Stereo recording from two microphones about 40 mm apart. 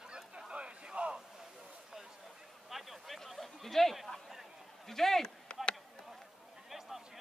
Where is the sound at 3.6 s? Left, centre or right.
Centre.